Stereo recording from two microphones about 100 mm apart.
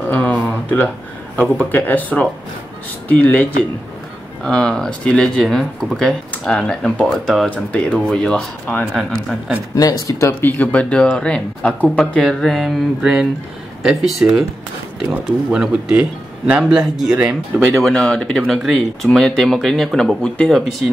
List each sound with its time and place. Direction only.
0.1 s speech: 15° left (ahead or behind)
8.9 s speech: centre (ahead or behind)
9.8 s speech: 40° left (ahead or behind)
10.2 s speech: 15° left (ahead or behind); by 17.6 s 10° right (ahead or behind)
17.8 s speech: 10° left (ahead or behind)